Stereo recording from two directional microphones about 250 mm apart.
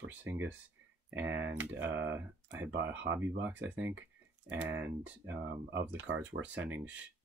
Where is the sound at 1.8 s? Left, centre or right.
Right.